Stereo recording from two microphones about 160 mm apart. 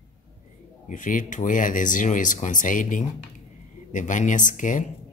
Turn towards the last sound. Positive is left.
turn(degrees=50)  # may be behind; listen again after turning